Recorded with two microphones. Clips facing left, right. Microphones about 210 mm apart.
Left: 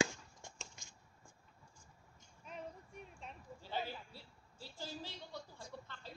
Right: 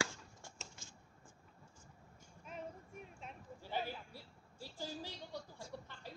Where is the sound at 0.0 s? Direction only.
15° left (ahead or behind).